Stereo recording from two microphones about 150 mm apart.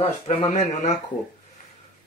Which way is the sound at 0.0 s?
40° left (ahead or behind).